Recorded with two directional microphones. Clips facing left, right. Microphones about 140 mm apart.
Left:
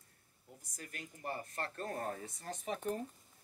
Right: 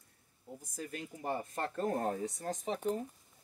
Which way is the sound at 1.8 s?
90° right.